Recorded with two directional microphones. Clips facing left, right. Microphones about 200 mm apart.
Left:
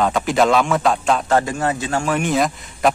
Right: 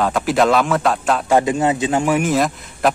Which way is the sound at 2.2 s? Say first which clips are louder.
Right 1 dB; centre (ahead or behind).